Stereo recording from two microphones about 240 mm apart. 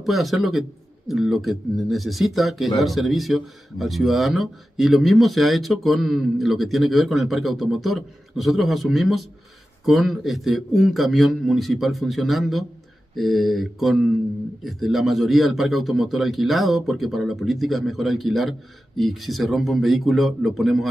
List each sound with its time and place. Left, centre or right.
0.0 s a man's voice: centre